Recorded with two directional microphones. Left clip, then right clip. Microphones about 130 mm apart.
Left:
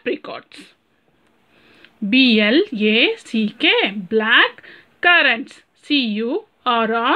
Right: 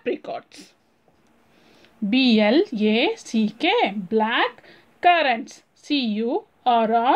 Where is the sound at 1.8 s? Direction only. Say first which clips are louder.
Left 6 dB; 35° left (ahead or behind).